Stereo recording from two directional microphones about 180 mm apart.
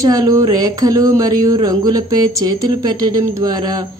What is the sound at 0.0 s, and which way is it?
Speech, 20° right (ahead or behind).